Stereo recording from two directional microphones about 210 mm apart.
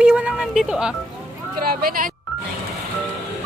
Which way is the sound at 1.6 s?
45° right (ahead or behind).